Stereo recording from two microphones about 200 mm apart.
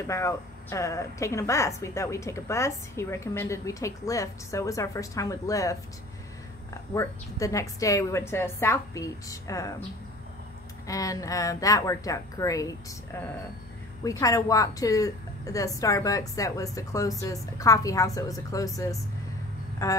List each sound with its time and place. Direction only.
0.0 s a woman's voice: 15° left (ahead or behind)
6.9 s a woman's voice: 15° left (ahead or behind)
10.9 s a woman's voice: 15° left (ahead or behind)